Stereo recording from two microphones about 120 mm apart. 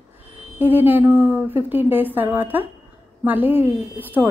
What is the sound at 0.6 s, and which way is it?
A woman's voice, 15° right (ahead or behind).